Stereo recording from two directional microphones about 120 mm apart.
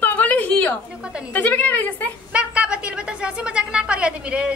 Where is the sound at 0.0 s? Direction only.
15° left (ahead or behind).